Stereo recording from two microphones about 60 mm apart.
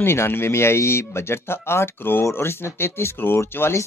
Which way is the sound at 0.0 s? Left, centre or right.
Left.